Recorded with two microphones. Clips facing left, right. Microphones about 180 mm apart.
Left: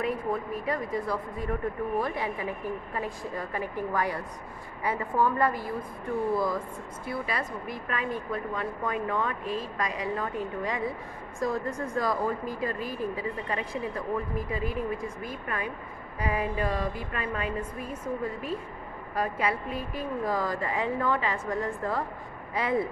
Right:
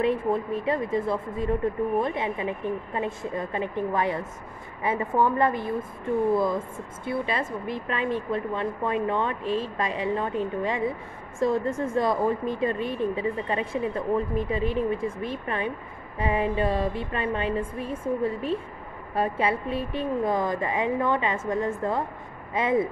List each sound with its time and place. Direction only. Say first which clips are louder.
0.0 s speech: right 5 dB; 25° right (ahead or behind)